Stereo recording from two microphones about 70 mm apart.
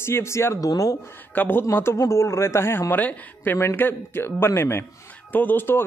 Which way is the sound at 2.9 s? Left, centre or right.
Left.